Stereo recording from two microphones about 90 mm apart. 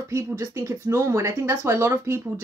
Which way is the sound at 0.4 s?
35° right (ahead or behind).